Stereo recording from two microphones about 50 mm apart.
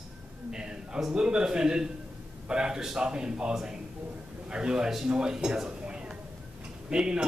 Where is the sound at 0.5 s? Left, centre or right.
Centre.